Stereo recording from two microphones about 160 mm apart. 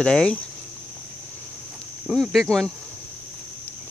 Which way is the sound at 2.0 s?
5° right (ahead or behind).